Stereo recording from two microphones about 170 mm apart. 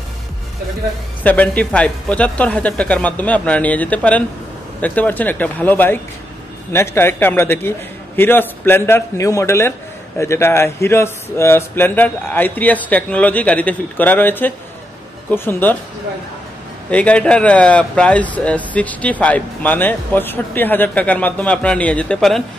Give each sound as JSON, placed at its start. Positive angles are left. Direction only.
{"t": 1.2, "sound": "a man's voice", "side_deg": 10}
{"t": 16.9, "sound": "a man's voice", "side_deg": 5}